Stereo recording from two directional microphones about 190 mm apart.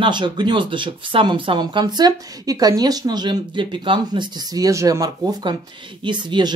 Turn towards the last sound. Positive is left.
turn(degrees=-25)  # may be behind; listen again after turning